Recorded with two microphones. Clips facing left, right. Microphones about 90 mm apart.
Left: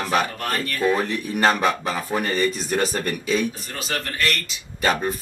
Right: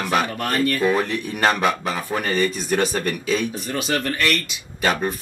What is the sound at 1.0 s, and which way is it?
Speech, centre (ahead or behind).